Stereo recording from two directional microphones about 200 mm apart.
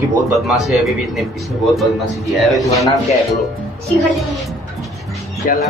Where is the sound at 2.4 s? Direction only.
Centre (ahead or behind).